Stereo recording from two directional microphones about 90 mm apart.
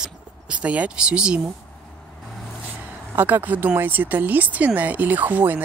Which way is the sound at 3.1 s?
20° right (ahead or behind).